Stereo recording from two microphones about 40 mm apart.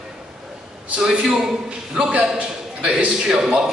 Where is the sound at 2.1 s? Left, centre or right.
Right.